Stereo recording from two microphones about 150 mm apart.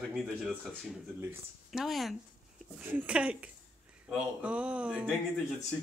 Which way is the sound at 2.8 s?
10° right (ahead or behind).